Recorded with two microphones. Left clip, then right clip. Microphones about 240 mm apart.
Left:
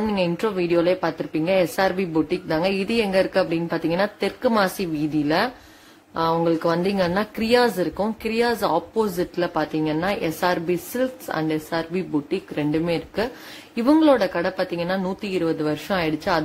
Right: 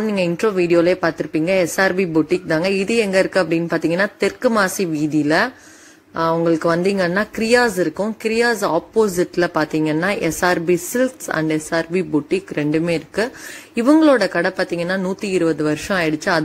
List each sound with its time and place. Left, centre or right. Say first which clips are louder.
0.0 s speech: right 4 dB; centre